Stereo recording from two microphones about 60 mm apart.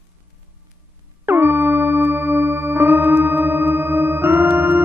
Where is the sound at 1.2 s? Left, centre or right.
Right.